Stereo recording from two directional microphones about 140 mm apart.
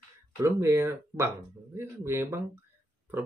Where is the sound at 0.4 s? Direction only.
20° right (ahead or behind).